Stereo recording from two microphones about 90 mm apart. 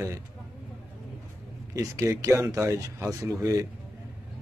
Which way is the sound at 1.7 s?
35° right (ahead or behind).